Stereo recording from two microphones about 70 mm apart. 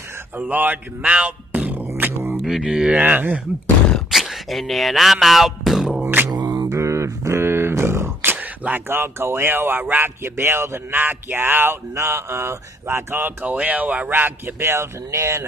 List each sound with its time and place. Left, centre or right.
0.4 s speech: right
2.0 s music: right
2.3 s speech: centre
3.0 s speech: right
4.1 s a sound: centre
6.0 s beatboxing: right
6.4 s beatboxing: right
6.7 s a sound: right
8.8 s a man's voice: right
11.9 s a man's voice: right
13.6 s speech: right